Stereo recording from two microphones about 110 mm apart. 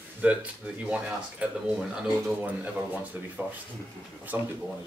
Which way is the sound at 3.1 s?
15° right (ahead or behind).